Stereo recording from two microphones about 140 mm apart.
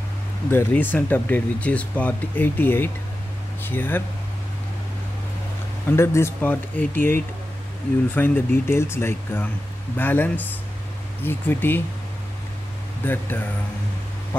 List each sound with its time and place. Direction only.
0.5 s speech: 15° left (ahead or behind)
5.9 s speech: 20° left (ahead or behind)
13.0 s speech: 15° left (ahead or behind)